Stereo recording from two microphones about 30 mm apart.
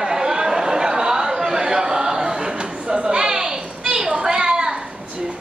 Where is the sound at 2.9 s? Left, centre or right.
Right.